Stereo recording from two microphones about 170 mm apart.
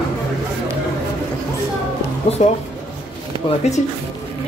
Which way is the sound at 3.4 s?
40° left (ahead or behind).